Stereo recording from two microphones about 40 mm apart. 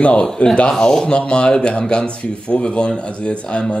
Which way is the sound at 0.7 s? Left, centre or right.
Centre.